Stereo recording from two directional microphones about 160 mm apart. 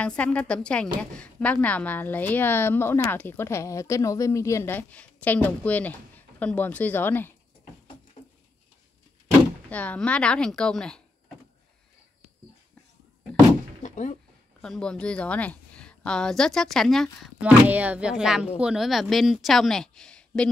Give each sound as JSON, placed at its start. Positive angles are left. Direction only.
{"t": 0.0, "sound": "a woman's voice", "side_deg": 10}
{"t": 8.2, "sound": "a sound", "side_deg": 35}
{"t": 9.7, "sound": "a woman's voice", "side_deg": 10}
{"t": 13.8, "sound": "a sound", "side_deg": 50}
{"t": 14.6, "sound": "a woman's voice", "side_deg": 5}
{"t": 17.4, "sound": "a woman's voice", "side_deg": -10}